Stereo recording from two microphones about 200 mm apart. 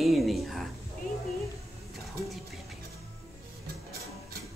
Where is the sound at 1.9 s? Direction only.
Centre (ahead or behind).